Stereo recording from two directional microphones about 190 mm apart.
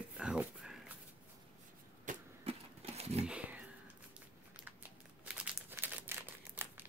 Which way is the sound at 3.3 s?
10° right (ahead or behind).